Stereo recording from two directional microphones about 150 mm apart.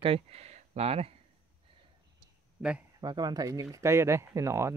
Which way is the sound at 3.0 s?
30° right (ahead or behind).